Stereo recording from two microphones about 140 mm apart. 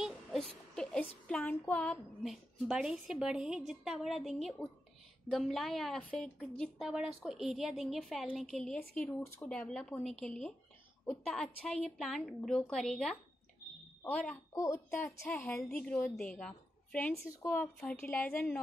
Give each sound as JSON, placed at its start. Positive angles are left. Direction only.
{"t": 0.0, "sound": "child singing", "side_deg": 0}
{"t": 2.6, "sound": "a woman's voice", "side_deg": -5}
{"t": 8.9, "sound": "a woman's voice", "side_deg": 15}
{"t": 14.5, "sound": "a woman's voice", "side_deg": 20}